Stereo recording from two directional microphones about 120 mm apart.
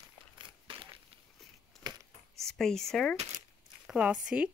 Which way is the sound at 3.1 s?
60° right (ahead or behind).